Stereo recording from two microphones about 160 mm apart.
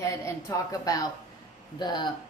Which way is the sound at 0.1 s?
20° left (ahead or behind).